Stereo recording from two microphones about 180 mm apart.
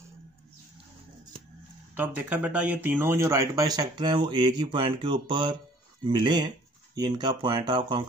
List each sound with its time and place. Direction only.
2.0 s speech: 10° right (ahead or behind); by 8.0 s 25° right (ahead or behind)